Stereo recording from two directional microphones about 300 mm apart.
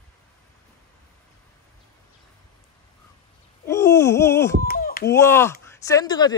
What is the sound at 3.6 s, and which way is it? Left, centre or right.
Wail, centre.